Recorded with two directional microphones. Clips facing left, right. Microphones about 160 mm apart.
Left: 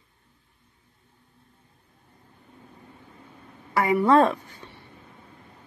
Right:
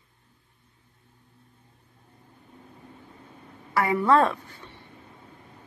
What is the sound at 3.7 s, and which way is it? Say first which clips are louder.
Speech: left 2 dB; 20° left (ahead or behind).